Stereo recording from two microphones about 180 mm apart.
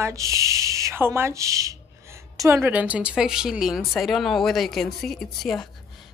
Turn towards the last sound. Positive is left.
turn(degrees=0)  # may be behind; listen again after turning